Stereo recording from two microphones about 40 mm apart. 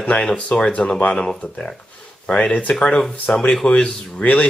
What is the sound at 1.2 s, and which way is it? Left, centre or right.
Speech, centre.